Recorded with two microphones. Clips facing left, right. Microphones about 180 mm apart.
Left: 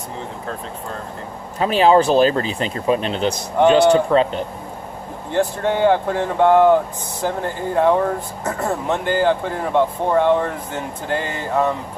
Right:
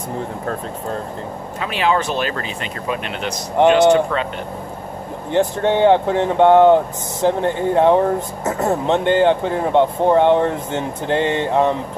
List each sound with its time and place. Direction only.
1.6 s speech: 35° left (ahead or behind)
5.3 s speech: 20° right (ahead or behind)